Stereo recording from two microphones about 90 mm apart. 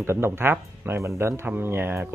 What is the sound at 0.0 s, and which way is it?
Speech, 25° right (ahead or behind).